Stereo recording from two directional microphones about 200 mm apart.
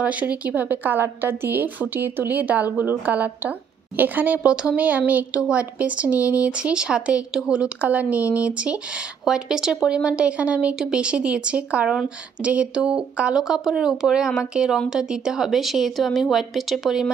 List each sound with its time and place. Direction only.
0.0 s a woman's voice: 5° right (ahead or behind)